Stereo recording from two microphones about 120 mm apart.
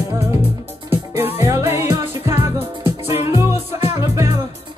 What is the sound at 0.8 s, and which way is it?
Music, 20° right (ahead or behind).